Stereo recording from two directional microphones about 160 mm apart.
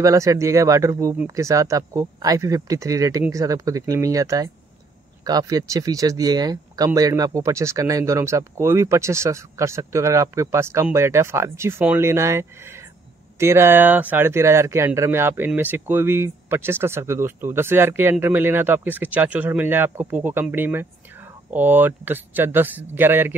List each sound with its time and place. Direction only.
0.0 s speech: 20° right (ahead or behind)